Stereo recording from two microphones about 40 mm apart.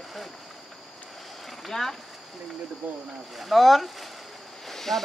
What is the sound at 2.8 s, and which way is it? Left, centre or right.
Speech, right.